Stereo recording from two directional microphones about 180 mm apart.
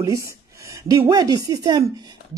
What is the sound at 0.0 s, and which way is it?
Speech, 15° right (ahead or behind).